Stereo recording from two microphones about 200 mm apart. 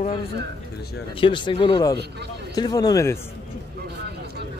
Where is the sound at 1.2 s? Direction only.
25° left (ahead or behind).